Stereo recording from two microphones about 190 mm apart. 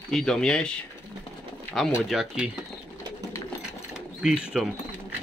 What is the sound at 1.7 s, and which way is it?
Speech, centre (ahead or behind).